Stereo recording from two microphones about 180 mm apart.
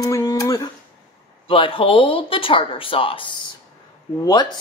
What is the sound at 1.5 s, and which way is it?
A man's voice, 30° left (ahead or behind).